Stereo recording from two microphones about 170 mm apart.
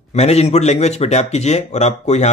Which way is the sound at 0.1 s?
40° left (ahead or behind).